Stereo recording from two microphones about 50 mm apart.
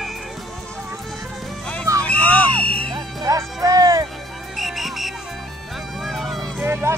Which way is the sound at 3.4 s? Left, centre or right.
Right.